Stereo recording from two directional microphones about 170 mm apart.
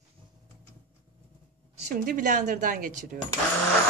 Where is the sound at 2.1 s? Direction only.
50° right (ahead or behind).